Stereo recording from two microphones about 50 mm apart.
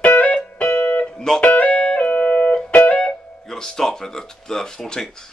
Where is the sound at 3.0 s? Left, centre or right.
Centre.